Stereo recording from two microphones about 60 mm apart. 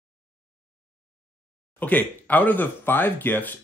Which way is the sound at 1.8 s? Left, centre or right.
Left.